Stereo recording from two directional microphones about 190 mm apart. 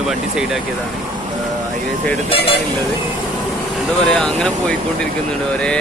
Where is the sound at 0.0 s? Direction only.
5° right (ahead or behind).